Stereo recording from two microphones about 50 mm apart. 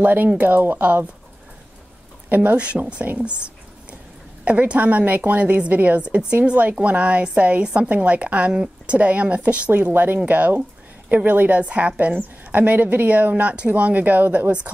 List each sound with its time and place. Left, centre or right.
0.0 s a woman's voice: right
0.6 s speech: right
2.2 s a woman's voice: right
3.1 s speech: right
4.5 s a woman's voice: right